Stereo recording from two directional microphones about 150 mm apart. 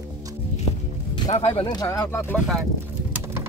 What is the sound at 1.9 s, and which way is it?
Speech, 10° left (ahead or behind).